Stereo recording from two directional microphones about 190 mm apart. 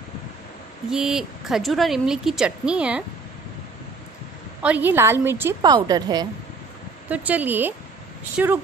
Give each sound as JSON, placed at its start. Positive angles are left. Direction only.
{"t": 0.8, "sound": "speech", "side_deg": -5}
{"t": 4.6, "sound": "a woman's voice", "side_deg": -10}
{"t": 7.1, "sound": "a woman's voice", "side_deg": -10}